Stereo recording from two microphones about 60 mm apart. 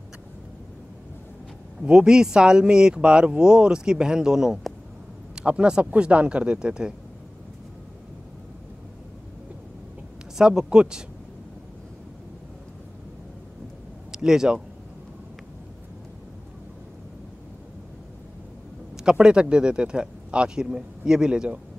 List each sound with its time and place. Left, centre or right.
1.8 s speech: centre
5.3 s speech: centre
10.3 s speech: centre
14.1 s speech: centre
18.9 s speech: centre